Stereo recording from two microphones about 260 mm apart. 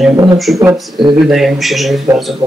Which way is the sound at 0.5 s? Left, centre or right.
Centre.